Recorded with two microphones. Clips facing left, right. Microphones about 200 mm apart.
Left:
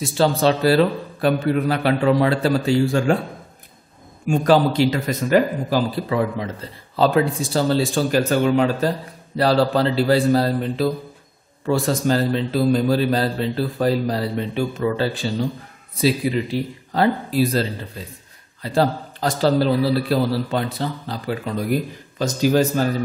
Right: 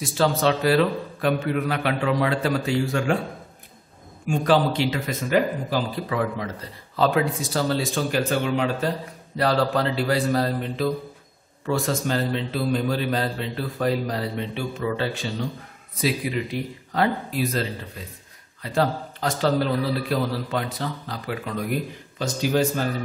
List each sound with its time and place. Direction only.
0.0 s a man's voice: 30° left (ahead or behind)
4.3 s a man's voice: 40° left (ahead or behind)